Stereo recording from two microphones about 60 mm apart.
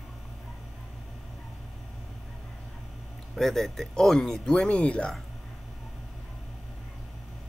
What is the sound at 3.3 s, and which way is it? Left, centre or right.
Speech, centre.